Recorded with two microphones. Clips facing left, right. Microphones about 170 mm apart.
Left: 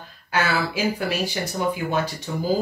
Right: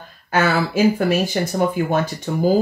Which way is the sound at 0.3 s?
50° right (ahead or behind).